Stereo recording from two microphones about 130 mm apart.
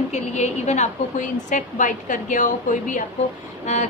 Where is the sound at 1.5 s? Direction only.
80° left.